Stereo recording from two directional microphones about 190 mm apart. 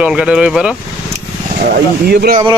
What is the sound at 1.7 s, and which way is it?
Speech, 55° right (ahead or behind).